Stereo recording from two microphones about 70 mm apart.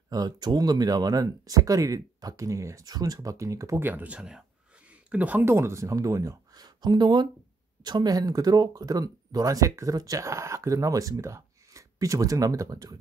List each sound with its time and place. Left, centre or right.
0.1 s speech: right
3.8 s speech: right
5.4 s speech: right
6.6 s speech: right